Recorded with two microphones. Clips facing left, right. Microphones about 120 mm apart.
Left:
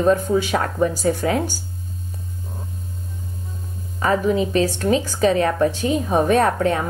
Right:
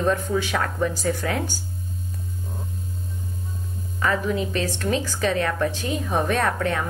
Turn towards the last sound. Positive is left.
turn(degrees=25)  # may be behind; listen again after turning